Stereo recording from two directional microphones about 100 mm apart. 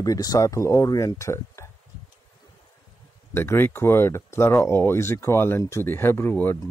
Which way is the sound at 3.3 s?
25° left (ahead or behind).